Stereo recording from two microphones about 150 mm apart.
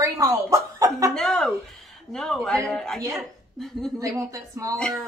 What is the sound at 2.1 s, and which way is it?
Speech, 5° left (ahead or behind).